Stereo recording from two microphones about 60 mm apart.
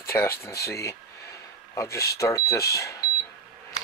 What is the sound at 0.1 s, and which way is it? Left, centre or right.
Speech, left.